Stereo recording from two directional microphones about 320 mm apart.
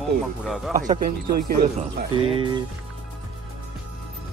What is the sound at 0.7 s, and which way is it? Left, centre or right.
Speech, right.